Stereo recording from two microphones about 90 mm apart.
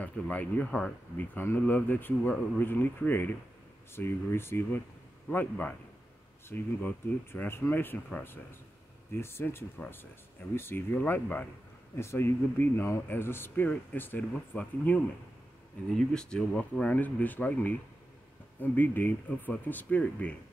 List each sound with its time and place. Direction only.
0.0 s speech: 20° left (ahead or behind)
1.3 s speech: 25° left (ahead or behind)
15.9 s speech: 10° left (ahead or behind)